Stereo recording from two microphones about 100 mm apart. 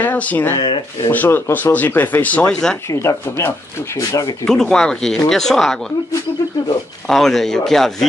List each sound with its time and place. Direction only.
0.0 s speech: 15° left (ahead or behind)
0.6 s speech: 50° left (ahead or behind)
1.1 s speech: 20° left (ahead or behind)
2.9 s speech: 30° left (ahead or behind)
4.5 s speech: 5° left (ahead or behind)
7.1 s speech: 5° left (ahead or behind)